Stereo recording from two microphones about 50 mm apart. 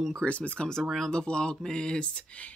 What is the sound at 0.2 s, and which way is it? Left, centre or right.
A woman's voice, left.